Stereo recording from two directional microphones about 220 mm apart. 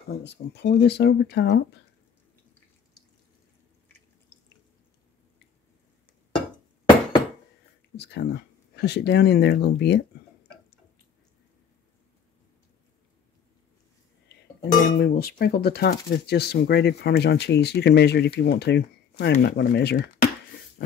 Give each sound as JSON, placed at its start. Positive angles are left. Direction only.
{"t": 0.1, "sound": "speech", "side_deg": 50}
{"t": 7.9, "sound": "speech", "side_deg": 50}
{"t": 14.8, "sound": "speech", "side_deg": 45}